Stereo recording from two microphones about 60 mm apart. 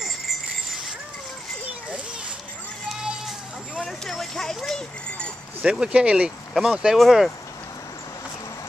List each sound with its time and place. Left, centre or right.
3.0 s sheep: centre
3.8 s clip-clop: centre
5.7 s speech: centre